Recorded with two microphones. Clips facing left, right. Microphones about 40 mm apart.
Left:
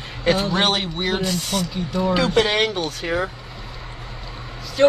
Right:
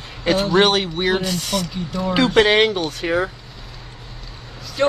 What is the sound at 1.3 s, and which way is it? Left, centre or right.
Speech, right.